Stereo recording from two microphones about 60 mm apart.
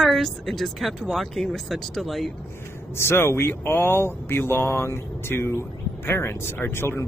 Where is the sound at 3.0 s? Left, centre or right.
Left.